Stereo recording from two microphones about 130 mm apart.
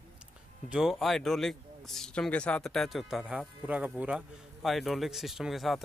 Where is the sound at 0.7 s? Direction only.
5° right (ahead or behind).